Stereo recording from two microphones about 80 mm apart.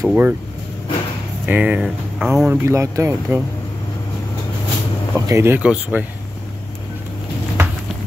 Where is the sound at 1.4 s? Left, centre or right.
Centre.